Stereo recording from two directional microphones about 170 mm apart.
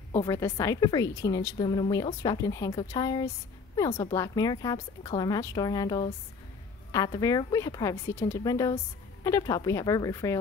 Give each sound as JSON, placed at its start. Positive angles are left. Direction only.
{"t": 0.2, "sound": "a woman's voice", "side_deg": 20}